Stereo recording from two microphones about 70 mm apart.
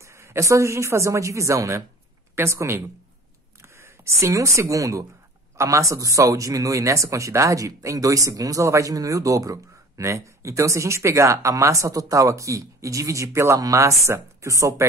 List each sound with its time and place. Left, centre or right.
0.0 s speech: right